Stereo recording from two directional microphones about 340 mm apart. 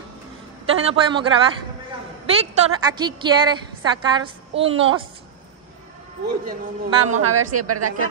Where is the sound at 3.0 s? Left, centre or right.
Centre.